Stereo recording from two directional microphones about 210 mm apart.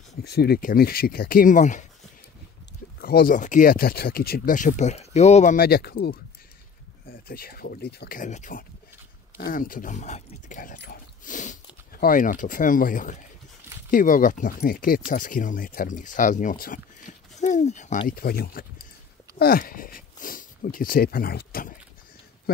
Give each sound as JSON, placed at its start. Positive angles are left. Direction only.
{"t": 0.2, "sound": "speech", "side_deg": 50}
{"t": 3.0, "sound": "speech", "side_deg": 45}